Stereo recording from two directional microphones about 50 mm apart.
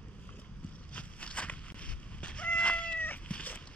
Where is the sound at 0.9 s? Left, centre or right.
Left.